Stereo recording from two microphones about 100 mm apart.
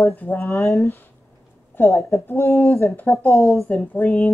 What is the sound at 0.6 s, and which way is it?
Speech, centre (ahead or behind).